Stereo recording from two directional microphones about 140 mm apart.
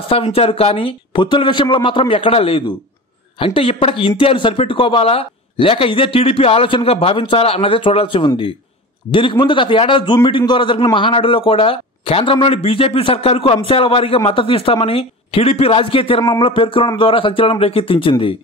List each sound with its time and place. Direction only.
0.1 s a man's voice: 45° left (ahead or behind)